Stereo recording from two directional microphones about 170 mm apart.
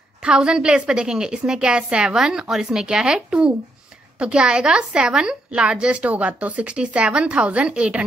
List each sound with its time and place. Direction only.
0.2 s a woman's voice: 5° right (ahead or behind)